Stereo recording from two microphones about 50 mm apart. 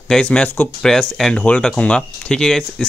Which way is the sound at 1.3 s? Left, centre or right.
Centre.